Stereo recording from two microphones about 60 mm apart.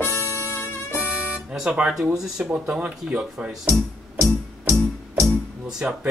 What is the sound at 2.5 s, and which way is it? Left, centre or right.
Speech, centre.